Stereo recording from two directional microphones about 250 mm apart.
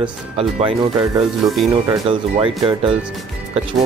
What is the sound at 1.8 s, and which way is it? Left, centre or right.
Speech, right.